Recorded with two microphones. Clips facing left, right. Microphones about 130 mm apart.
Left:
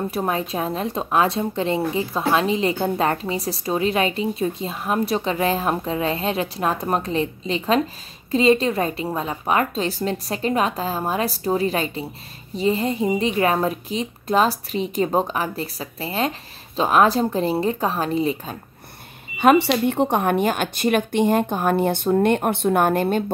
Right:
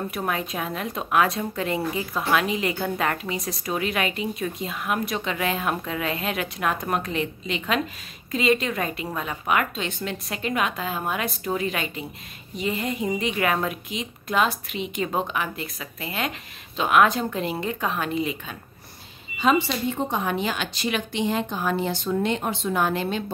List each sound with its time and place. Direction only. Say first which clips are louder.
0.1 s speech: left 4 dB; 30° left (ahead or behind)
19.3 s a woman's voice: left 6 dB; 65° left (ahead or behind)